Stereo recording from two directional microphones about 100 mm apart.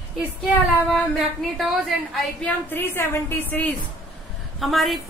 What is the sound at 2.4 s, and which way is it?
A woman's voice, 20° left (ahead or behind).